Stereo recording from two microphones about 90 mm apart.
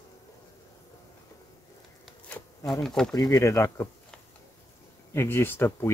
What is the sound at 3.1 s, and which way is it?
Speech, 40° left (ahead or behind).